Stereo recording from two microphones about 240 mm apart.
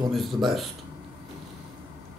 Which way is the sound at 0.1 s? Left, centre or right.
Centre.